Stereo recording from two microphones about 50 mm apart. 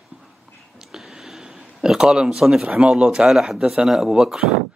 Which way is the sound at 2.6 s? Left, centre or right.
Right.